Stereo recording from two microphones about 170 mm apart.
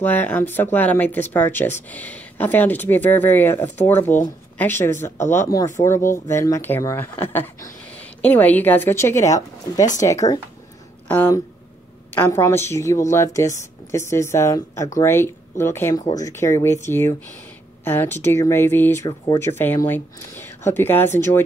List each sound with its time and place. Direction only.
0.0 s speech: 10° left (ahead or behind)